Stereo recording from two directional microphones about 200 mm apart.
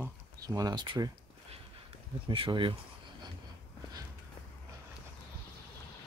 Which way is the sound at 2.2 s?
25° right (ahead or behind).